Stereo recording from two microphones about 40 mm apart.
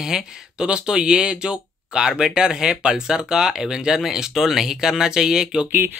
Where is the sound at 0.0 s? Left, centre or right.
Centre.